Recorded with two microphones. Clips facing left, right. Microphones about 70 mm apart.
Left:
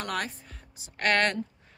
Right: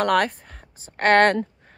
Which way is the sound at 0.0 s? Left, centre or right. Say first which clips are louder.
Right 12 dB; right.